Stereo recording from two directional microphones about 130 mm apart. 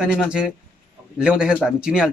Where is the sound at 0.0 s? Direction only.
5° right (ahead or behind).